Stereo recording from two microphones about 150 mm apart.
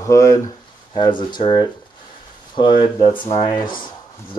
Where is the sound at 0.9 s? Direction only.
30° left (ahead or behind).